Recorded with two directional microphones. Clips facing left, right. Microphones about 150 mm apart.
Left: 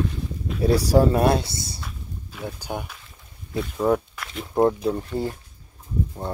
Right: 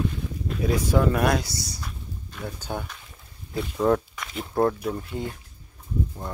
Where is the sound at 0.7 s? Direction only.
35° left (ahead or behind).